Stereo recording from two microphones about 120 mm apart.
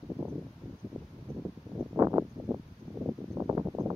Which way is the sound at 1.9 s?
20° right (ahead or behind).